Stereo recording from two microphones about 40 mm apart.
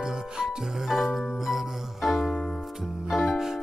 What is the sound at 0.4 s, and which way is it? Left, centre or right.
Music, centre.